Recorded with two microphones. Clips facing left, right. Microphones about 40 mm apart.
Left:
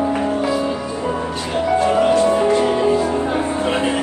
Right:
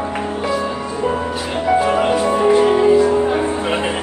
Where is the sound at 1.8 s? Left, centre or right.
Centre.